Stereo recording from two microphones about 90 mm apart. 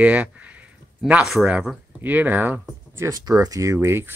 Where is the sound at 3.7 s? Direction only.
25° right (ahead or behind).